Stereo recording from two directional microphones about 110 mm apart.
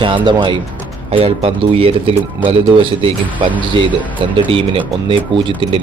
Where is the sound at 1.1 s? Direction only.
60° right (ahead or behind).